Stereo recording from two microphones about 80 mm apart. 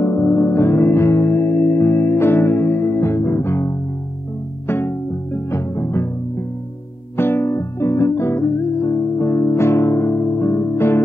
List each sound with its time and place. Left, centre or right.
0.0 s music: left
7.2 s music: left